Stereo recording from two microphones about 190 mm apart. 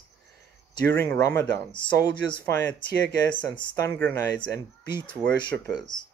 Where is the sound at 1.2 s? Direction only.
15° left (ahead or behind).